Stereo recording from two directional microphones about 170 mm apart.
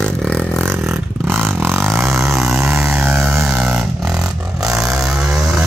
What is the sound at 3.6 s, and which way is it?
Vehicle, centre (ahead or behind).